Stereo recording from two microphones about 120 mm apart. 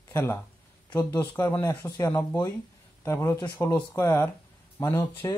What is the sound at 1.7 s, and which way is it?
Speech, 35° left (ahead or behind).